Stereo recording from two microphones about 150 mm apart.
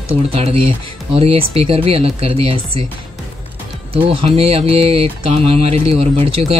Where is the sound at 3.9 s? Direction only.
35° right (ahead or behind).